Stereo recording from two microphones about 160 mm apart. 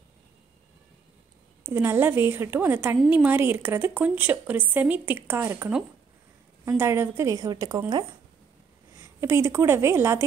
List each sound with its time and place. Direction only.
1.7 s speech: 15° right (ahead or behind)
6.8 s a woman's voice: 15° right (ahead or behind)
8.9 s a woman's voice: 20° right (ahead or behind)